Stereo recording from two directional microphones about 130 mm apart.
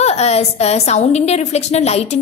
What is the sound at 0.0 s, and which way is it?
A woman's voice, 55° left (ahead or behind).